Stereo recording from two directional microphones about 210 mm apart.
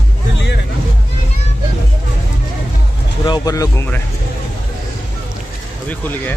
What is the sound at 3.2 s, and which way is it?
Speech, 20° left (ahead or behind).